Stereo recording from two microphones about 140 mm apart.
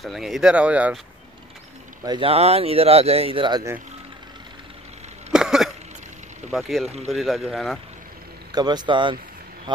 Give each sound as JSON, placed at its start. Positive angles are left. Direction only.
{"t": 0.0, "sound": "speech", "side_deg": 0}
{"t": 2.0, "sound": "speech", "side_deg": -40}
{"t": 5.3, "sound": "cough", "side_deg": -5}
{"t": 6.5, "sound": "speech", "side_deg": 0}
{"t": 8.5, "sound": "speech", "side_deg": -30}